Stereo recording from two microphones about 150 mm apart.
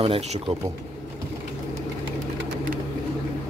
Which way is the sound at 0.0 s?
40° right (ahead or behind).